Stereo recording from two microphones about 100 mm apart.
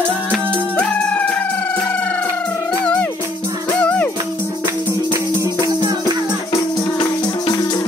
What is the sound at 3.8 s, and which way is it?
Music, 10° left (ahead or behind).